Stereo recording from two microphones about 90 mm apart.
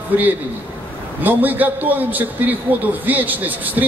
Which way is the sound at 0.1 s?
20° right (ahead or behind).